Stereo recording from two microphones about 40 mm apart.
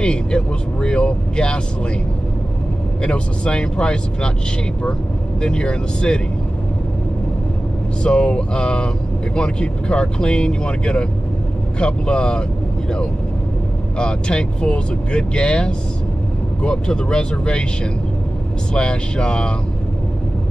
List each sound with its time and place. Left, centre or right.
0.0 s speech: left
3.0 s speech: left
5.4 s speech: left
8.0 s speech: left
13.9 s speech: left
18.7 s speech: left